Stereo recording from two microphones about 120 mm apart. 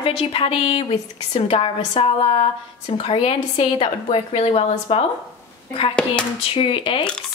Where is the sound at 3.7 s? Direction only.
50° left (ahead or behind).